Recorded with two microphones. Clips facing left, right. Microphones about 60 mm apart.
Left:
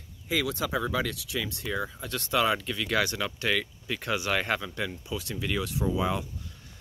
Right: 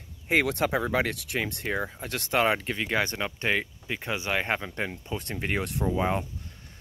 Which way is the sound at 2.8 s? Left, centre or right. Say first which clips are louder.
Left 1 dB; right.